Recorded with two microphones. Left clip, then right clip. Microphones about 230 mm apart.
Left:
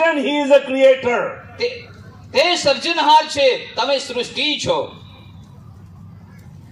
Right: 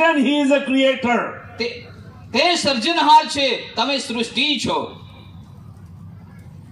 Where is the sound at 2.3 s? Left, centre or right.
Right.